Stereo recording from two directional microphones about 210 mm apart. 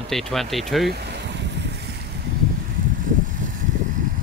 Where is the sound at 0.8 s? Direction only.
50° right (ahead or behind).